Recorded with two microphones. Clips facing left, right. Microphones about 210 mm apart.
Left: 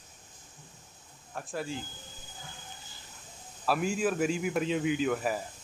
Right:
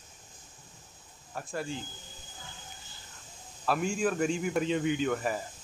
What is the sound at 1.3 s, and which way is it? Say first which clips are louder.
Speech: even; centre (ahead or behind).